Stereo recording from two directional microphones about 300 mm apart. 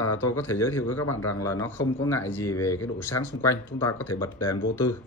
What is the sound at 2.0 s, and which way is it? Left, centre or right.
Speech, centre.